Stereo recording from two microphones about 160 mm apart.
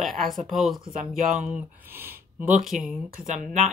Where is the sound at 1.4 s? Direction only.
15° right (ahead or behind).